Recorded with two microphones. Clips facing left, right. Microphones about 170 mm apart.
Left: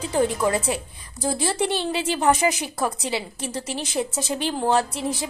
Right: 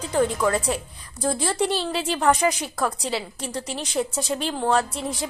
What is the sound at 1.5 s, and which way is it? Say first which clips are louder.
A woman's voice: even; centre (ahead or behind).